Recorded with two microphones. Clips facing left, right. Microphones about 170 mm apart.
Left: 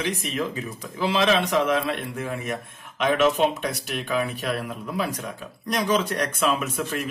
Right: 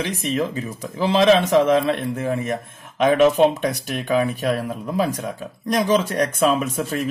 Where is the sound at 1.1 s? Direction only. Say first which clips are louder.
Right 7 dB; 45° right (ahead or behind).